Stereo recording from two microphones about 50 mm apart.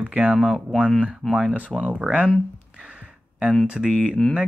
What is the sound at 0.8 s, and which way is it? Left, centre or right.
Speech, centre.